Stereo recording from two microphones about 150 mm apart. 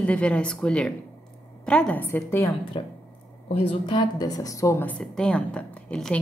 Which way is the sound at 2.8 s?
35° left (ahead or behind).